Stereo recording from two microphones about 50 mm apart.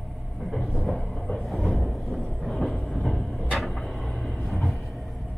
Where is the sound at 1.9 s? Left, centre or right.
Centre.